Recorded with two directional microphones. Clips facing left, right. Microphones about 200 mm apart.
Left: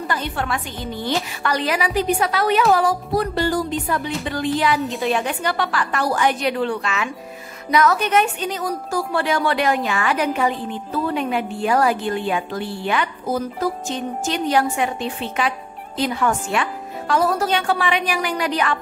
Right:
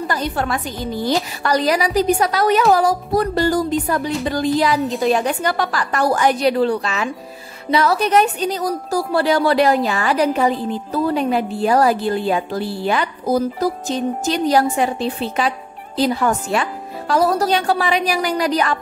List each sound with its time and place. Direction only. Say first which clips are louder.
0.1 s a woman's voice: right 3 dB; 40° right (ahead or behind)